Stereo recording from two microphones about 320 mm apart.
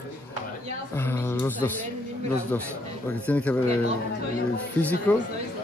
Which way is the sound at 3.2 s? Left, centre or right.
Centre.